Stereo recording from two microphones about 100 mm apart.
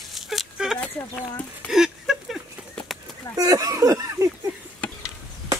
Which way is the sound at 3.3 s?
35° right (ahead or behind).